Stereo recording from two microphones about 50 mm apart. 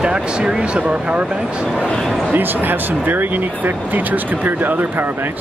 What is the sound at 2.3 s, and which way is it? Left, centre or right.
Speech, right.